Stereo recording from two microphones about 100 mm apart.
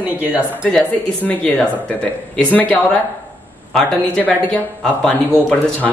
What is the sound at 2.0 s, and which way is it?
Speech, 15° left (ahead or behind).